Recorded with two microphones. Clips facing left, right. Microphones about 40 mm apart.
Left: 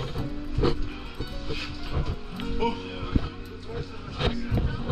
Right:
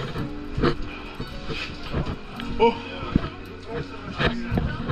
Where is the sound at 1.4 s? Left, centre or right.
Right.